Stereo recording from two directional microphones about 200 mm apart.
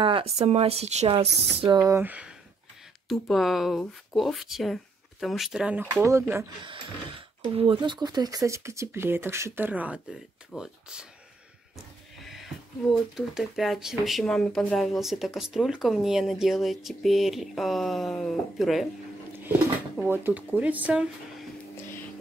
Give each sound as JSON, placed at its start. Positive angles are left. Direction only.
{"t": 0.0, "sound": "speech", "side_deg": -30}
{"t": 6.6, "sound": "speech", "side_deg": -25}
{"t": 12.2, "sound": "a sound", "side_deg": 0}
{"t": 12.9, "sound": "speech", "side_deg": 0}
{"t": 20.0, "sound": "speech", "side_deg": -10}